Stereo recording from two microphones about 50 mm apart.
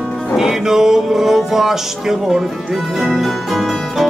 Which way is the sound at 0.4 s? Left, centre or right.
Centre.